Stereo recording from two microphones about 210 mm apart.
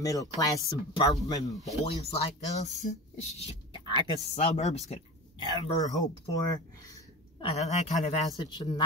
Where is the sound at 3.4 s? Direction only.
30° left (ahead or behind).